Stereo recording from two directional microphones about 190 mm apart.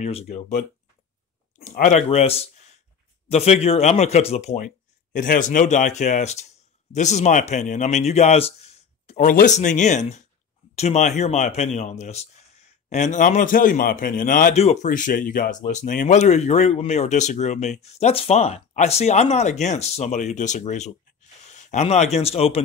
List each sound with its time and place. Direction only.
0.0 s a man's voice: 35° left (ahead or behind)